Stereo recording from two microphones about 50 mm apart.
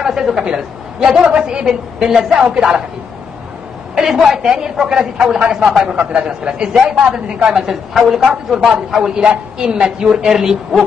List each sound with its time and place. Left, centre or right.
0.0 s a sound: centre
1.0 s a woman's voice: centre
3.9 s a woman's voice: centre
9.2 s a woman's voice: right